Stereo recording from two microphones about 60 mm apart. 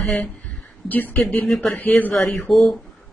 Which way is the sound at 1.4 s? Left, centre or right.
Centre.